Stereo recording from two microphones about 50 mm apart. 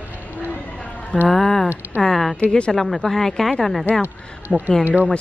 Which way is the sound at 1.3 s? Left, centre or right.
Centre.